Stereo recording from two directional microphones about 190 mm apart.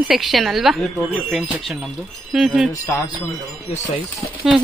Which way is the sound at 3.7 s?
40° left (ahead or behind).